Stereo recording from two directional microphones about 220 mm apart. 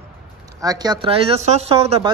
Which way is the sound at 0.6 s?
15° right (ahead or behind).